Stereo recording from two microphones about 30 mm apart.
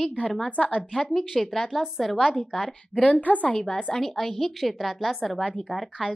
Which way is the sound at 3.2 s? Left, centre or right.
Left.